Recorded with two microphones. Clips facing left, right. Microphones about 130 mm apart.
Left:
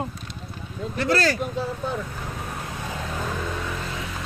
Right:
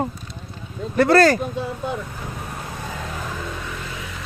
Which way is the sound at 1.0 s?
55° right (ahead or behind).